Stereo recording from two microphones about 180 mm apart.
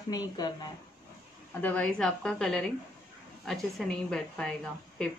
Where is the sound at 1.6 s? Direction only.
10° left (ahead or behind).